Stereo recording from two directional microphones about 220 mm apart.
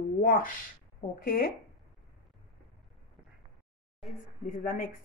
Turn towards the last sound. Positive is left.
turn(degrees=40)  # may be behind; listen again after turning